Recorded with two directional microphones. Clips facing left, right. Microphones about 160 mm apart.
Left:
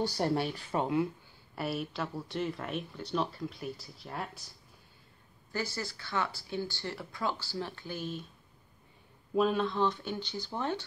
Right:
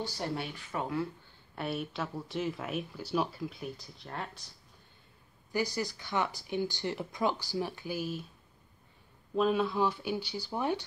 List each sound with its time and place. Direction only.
0.2 s speech: 40° left (ahead or behind); by 1.0 s 25° left (ahead or behind)
1.5 s speech: centre (ahead or behind)
5.5 s speech: 15° right (ahead or behind)
9.3 s speech: centre (ahead or behind)